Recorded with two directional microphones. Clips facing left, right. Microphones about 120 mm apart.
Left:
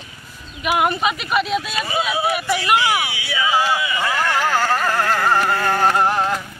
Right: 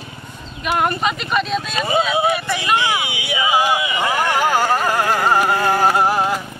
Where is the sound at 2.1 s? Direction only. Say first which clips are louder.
Right 3 dB; 20° right (ahead or behind).